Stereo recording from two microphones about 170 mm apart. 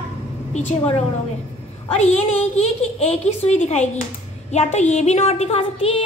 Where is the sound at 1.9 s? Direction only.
40° left (ahead or behind).